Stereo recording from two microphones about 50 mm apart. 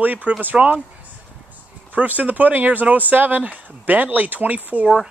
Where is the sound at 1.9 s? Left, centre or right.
Right.